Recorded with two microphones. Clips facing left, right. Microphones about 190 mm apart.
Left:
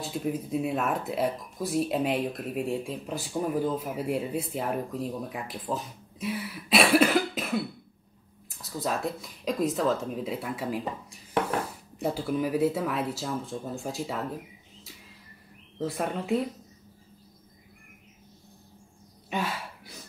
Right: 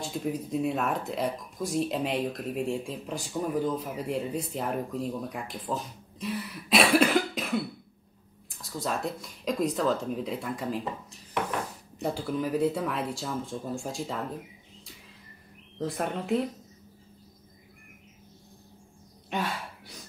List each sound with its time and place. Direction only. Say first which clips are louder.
0.0 s speech: left 1 dB; 5° left (ahead or behind)
15.8 s speech: left 1 dB; centre (ahead or behind)
19.3 s gasp: even; 5° left (ahead or behind)